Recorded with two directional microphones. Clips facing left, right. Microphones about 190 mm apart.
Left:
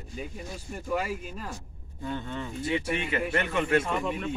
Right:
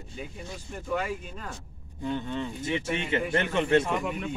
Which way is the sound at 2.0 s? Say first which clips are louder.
Right 3 dB; 20° right (ahead or behind).